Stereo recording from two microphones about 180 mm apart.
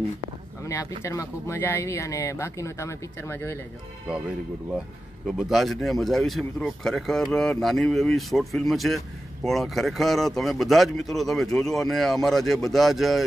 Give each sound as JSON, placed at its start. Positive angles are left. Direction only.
{"t": 0.7, "sound": "speech", "side_deg": 15}
{"t": 5.2, "sound": "speech", "side_deg": 0}